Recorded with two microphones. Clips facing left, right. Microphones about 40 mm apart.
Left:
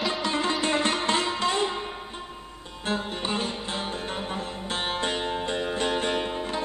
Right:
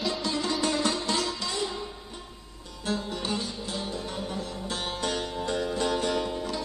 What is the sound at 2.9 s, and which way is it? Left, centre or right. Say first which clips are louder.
Music: left 2 dB; left.